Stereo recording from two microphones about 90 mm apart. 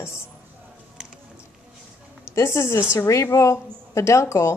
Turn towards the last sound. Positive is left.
turn(degrees=30)  # may be behind; listen again after turning